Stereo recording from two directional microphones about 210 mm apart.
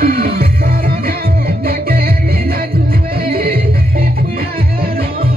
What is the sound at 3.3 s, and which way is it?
Music, 45° right (ahead or behind).